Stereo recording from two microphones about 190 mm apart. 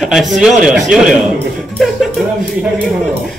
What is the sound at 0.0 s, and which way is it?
Speech, centre (ahead or behind).